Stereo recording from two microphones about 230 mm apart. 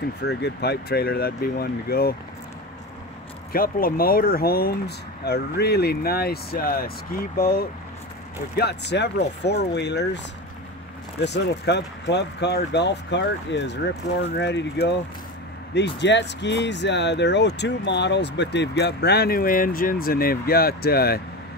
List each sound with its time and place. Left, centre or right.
0.2 s speech: left
3.5 s speech: left
11.2 s speech: left